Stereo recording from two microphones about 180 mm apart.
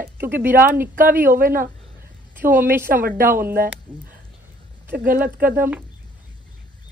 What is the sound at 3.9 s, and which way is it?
Speech, 10° right (ahead or behind).